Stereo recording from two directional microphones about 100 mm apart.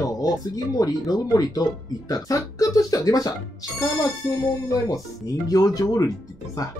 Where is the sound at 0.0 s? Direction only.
35° left (ahead or behind).